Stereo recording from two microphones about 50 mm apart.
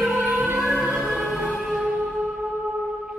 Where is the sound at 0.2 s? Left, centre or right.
Right.